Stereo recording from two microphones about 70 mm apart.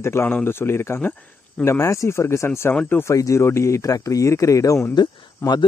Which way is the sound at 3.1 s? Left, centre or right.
Left.